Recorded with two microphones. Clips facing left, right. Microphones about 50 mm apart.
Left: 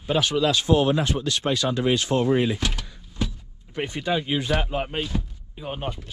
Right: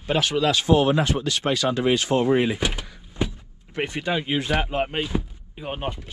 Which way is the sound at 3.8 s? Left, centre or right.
Right.